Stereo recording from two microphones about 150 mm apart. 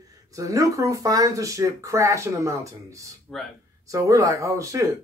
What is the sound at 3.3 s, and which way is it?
Speech, 5° left (ahead or behind).